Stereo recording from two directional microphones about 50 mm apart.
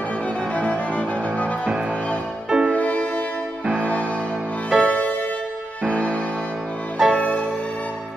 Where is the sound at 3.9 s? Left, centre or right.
Left.